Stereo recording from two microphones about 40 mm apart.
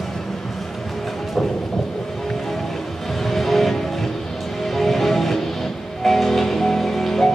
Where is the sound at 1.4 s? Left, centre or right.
Centre.